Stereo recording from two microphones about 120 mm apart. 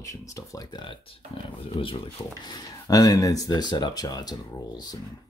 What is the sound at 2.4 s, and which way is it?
Speech, 35° left (ahead or behind).